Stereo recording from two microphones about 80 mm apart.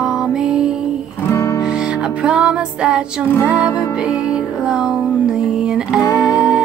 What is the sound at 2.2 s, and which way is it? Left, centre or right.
Music, centre.